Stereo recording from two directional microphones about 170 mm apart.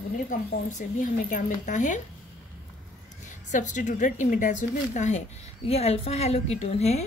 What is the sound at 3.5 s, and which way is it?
A woman's voice, 45° left (ahead or behind).